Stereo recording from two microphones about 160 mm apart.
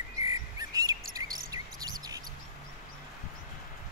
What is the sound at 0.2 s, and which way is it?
Insect, 20° right (ahead or behind).